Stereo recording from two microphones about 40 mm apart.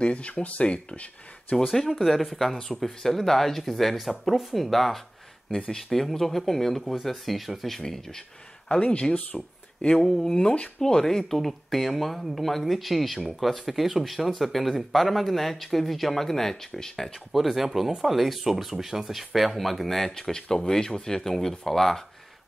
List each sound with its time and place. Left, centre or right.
0.0 s speech: left
0.7 s speech: left
1.7 s speech: centre
7.8 s speech: centre
8.6 s speech: left; by 22.0 s centre